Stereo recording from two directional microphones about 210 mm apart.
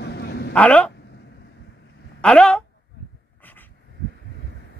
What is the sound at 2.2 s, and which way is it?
Speech, 5° left (ahead or behind).